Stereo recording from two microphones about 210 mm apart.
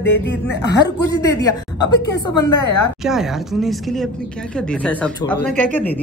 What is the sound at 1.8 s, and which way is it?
Speech, 20° left (ahead or behind).